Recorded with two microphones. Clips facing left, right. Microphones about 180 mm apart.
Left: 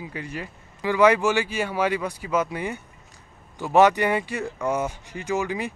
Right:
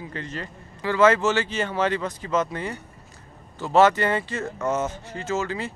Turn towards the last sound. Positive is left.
turn(degrees=15)  # may be behind; listen again after turning